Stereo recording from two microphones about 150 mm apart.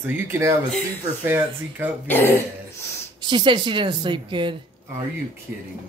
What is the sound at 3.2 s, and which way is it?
Speech, 30° right (ahead or behind).